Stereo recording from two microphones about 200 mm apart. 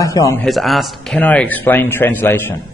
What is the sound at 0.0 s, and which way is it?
Speech, 15° left (ahead or behind).